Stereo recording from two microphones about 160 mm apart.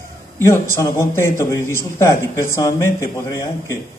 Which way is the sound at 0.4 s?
15° left (ahead or behind).